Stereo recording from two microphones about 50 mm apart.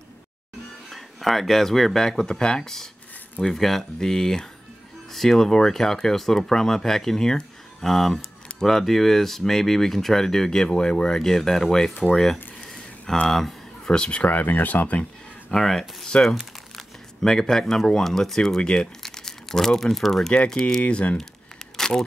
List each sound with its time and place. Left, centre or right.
0.8 s speech: centre
12.1 s a sound: centre
13.9 s speech: centre
14.2 s speech: left
15.5 s speech: centre
16.1 s speech: left
17.2 s speech: centre
20.8 s speech: left
21.7 s single-lens reflex camera: centre